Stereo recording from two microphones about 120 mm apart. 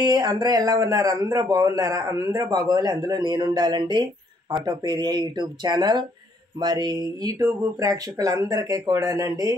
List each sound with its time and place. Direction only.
0.0 s speech: 35° right (ahead or behind)